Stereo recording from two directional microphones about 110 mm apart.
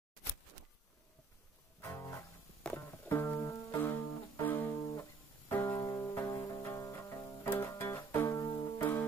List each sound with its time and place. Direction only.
1.8 s music: 30° left (ahead or behind)